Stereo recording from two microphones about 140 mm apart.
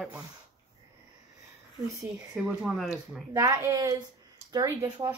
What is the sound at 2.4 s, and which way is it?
Speech, 5° right (ahead or behind).